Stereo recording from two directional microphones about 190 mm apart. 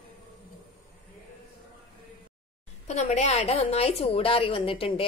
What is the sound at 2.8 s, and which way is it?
A woman's voice, 35° left (ahead or behind).